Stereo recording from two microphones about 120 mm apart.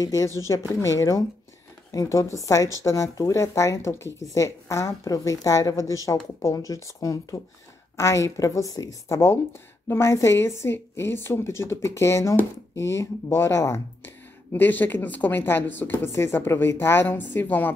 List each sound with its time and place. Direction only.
0.0 s a woman's voice: 30° left (ahead or behind)